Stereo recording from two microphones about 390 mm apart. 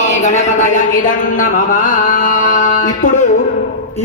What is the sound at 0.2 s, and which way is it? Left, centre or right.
A man's voice, centre.